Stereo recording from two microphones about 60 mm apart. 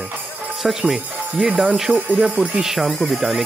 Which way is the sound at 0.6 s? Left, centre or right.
Centre.